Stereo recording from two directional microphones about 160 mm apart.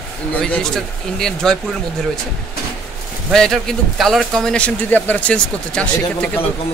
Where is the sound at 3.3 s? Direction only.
5° left (ahead or behind).